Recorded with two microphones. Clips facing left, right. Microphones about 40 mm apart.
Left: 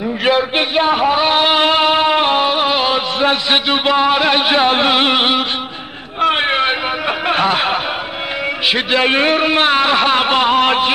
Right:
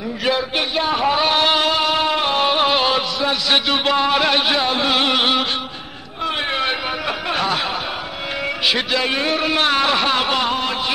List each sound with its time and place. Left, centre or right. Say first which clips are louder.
0.2 s a man's voice: left 5 dB; left
1.0 s a sound: left 3 dB; centre
1.6 s music: left 5 dB; left
2.4 s music: left 2 dB; centre
3.4 s a man's voice: left 3 dB; left
4.6 s a man's voice: left 6 dB; left
4.9 s a man's voice: left 3 dB; left
6.2 s a sound: left 7 dB; left
8.9 s a man's voice: left 6 dB; left
10.6 s music: left 9 dB; left